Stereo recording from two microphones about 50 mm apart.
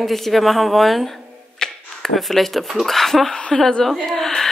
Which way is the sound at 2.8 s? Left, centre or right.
Centre.